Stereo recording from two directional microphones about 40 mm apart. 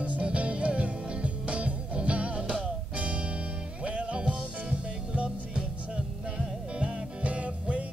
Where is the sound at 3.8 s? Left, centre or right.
Right.